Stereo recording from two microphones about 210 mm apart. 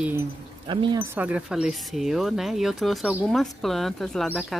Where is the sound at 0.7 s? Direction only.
20° right (ahead or behind).